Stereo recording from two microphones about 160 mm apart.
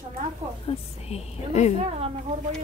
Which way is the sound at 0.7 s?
40° left (ahead or behind).